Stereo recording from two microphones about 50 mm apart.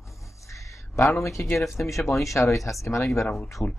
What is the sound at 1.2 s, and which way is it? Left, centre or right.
Speech, left.